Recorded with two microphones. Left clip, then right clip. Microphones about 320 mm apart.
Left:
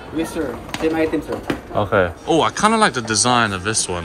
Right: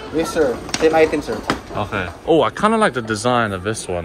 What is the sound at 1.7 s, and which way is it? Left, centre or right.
Speech, centre.